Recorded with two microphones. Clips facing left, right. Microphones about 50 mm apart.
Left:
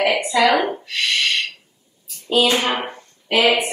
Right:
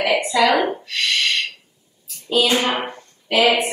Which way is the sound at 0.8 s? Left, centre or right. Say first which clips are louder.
Even; centre.